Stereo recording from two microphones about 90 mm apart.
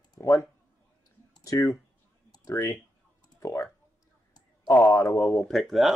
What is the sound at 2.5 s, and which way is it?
Speech, 30° left (ahead or behind).